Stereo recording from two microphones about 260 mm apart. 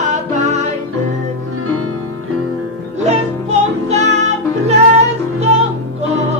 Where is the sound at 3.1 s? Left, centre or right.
Right.